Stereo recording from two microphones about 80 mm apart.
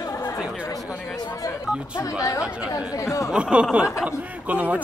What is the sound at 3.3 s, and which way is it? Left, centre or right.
Speech, centre.